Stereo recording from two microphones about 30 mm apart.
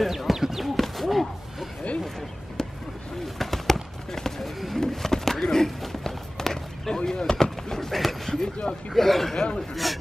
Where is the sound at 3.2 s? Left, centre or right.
Centre.